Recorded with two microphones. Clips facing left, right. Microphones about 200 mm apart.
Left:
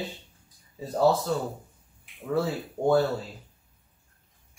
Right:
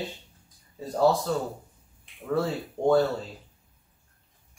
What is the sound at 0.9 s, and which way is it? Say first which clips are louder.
Speech: even; 5° left (ahead or behind).